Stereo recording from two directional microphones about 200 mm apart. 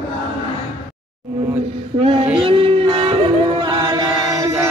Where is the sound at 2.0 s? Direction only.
30° right (ahead or behind).